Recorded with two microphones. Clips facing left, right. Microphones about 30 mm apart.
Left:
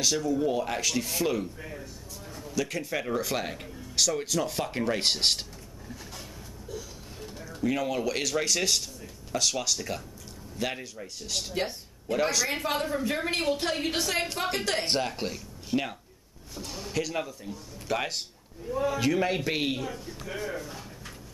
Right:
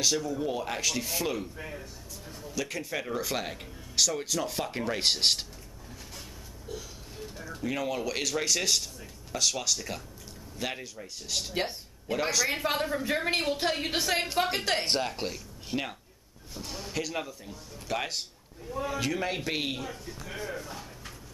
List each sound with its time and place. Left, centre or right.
0.0 s speech: centre
6.7 s a sound: right
7.2 s speech: centre